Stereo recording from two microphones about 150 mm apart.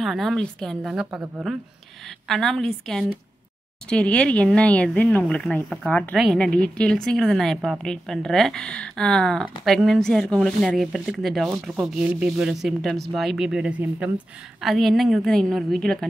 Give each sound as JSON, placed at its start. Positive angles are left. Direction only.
{"t": 0.0, "sound": "a woman's voice", "side_deg": 0}
{"t": 6.1, "sound": "speech", "side_deg": -5}